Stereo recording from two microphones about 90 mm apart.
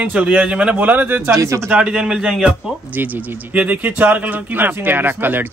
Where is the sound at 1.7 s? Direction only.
10° right (ahead or behind).